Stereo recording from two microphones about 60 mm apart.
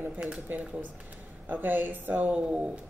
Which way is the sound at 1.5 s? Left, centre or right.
Right.